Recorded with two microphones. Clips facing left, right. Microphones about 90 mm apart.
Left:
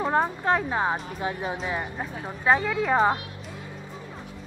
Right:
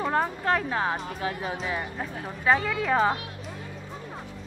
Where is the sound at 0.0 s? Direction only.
15° left (ahead or behind).